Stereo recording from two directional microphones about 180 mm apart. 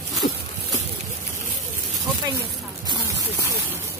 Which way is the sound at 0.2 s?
45° left (ahead or behind).